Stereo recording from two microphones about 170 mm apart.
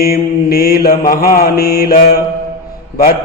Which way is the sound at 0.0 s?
60° left (ahead or behind).